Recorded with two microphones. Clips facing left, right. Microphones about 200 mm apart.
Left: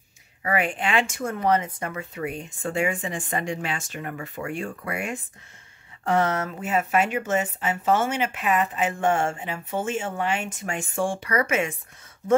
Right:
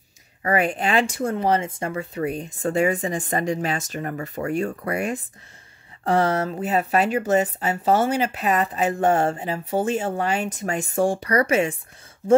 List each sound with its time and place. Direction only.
0.4 s speech: 40° right (ahead or behind)